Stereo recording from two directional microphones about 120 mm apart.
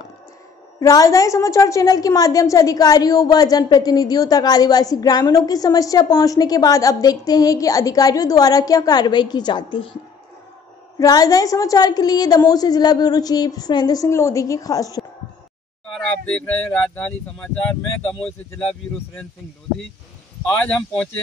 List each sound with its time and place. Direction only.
0.7 s a woman's voice: 30° left (ahead or behind)
11.0 s a woman's voice: 30° left (ahead or behind)
16.1 s speech: 10° left (ahead or behind)
20.4 s speech: 15° left (ahead or behind)